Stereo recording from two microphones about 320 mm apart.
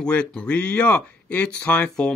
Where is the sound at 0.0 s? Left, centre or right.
Centre.